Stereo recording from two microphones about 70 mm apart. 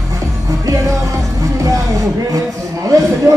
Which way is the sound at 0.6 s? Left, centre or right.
Right.